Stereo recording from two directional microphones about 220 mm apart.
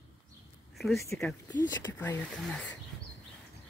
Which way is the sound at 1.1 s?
5° left (ahead or behind).